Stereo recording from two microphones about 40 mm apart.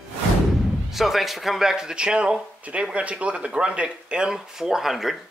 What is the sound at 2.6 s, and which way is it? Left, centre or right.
Speech, right.